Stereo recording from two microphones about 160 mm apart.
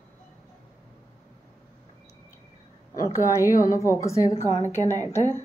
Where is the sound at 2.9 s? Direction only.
20° left (ahead or behind).